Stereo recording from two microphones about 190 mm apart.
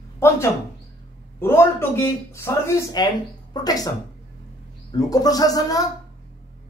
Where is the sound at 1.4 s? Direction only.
15° left (ahead or behind).